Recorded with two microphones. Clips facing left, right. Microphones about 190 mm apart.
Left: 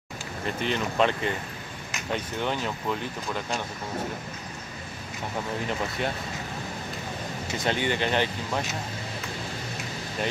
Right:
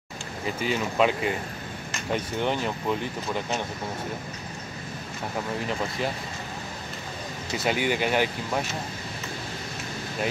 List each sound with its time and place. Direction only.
0.5 s speech: 5° right (ahead or behind)
7.5 s speech: 5° right (ahead or behind)